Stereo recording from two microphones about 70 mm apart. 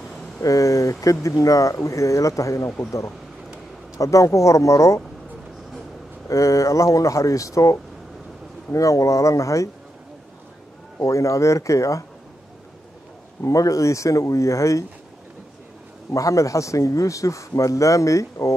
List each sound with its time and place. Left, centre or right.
0.4 s a man's voice: left
4.0 s a man's voice: left
6.2 s a man's voice: left
8.7 s a man's voice: left
11.0 s a man's voice: left
13.4 s a man's voice: left
16.1 s a man's voice: left